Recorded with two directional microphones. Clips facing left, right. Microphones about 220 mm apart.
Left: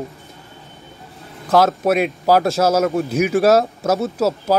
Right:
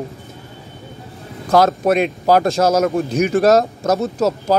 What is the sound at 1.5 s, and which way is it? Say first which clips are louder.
Speech: right 1 dB; centre (ahead or behind).